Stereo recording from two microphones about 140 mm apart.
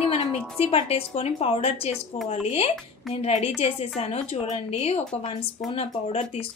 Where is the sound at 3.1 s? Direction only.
45° left (ahead or behind).